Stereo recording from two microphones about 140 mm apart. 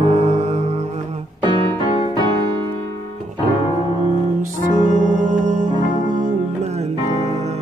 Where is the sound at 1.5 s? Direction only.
35° left (ahead or behind).